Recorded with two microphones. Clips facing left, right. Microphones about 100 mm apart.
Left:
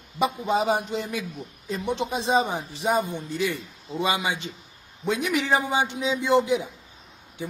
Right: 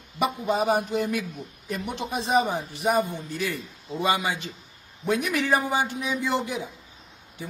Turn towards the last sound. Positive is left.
turn(degrees=20)  # may be behind; listen again after turning